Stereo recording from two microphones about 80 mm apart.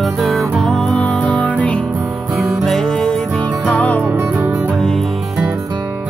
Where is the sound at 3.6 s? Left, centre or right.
Centre.